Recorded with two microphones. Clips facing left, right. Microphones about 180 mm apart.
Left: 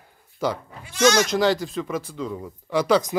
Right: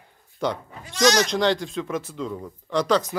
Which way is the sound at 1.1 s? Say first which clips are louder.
Left 1 dB; 5° left (ahead or behind).